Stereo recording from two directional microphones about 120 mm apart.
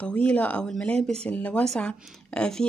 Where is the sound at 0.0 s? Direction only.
10° left (ahead or behind).